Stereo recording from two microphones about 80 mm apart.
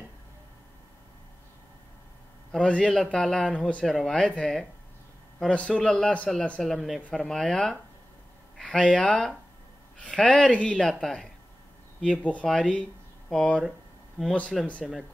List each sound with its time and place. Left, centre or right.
2.5 s a man's voice: centre
3.8 s a man's voice: centre
14.8 s speech: centre